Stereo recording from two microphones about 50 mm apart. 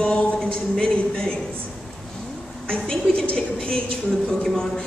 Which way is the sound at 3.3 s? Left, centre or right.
Centre.